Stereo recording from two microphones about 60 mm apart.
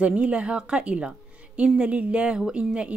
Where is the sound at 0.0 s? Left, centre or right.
Right.